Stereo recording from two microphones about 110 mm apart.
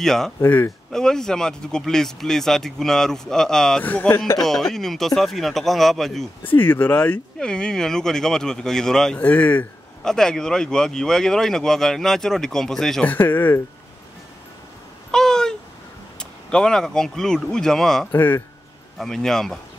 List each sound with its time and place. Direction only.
0.0 s speech: 5° left (ahead or behind)
0.5 s speech: 15° left (ahead or behind)
0.9 s speech: 5° left (ahead or behind)
3.8 s speech: 15° left (ahead or behind)
4.4 s speech: 5° left (ahead or behind)
6.4 s speech: 15° left (ahead or behind)
13.0 s speech: 15° left (ahead or behind)
15.0 s a sound: 5° left (ahead or behind)
16.2 s speech: 5° left (ahead or behind)
18.1 s speech: 20° left (ahead or behind)
18.9 s speech: 5° left (ahead or behind)